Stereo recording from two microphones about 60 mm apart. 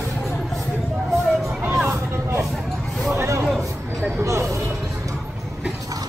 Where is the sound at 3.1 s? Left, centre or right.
Right.